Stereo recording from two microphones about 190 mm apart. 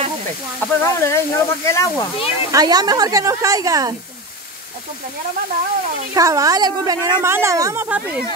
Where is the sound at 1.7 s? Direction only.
15° left (ahead or behind).